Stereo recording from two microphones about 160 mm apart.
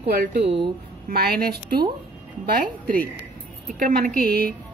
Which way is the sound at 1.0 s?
75° right (ahead or behind).